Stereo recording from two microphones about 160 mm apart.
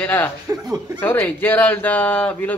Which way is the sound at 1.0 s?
15° left (ahead or behind).